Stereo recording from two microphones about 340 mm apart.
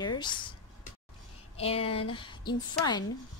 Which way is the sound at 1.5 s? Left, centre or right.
Centre.